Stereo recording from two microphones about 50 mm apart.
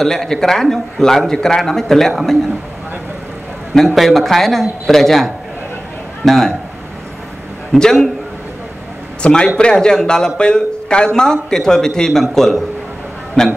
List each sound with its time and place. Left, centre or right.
0.0 s speech: centre
3.7 s a man's voice: centre
7.7 s speech: centre
9.2 s speech: centre